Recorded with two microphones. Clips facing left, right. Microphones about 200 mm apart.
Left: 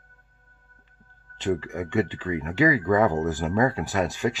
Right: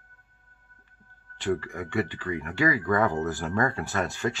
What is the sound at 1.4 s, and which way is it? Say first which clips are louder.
Speech: left 2 dB; 20° left (ahead or behind).